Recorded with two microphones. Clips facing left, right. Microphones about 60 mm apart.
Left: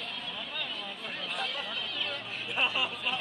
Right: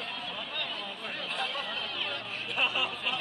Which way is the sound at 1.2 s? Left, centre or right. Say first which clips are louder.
Right 1 dB; centre.